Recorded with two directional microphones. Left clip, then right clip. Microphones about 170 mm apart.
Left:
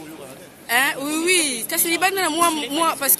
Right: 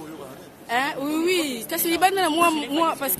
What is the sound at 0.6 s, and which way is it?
A woman's voice, 15° right (ahead or behind).